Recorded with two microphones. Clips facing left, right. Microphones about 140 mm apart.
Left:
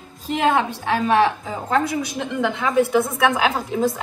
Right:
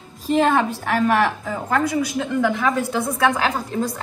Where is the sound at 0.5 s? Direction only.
20° left (ahead or behind).